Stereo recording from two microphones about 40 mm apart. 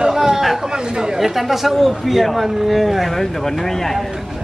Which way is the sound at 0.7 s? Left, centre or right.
Centre.